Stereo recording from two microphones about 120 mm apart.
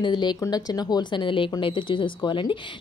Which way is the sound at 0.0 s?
35° left (ahead or behind).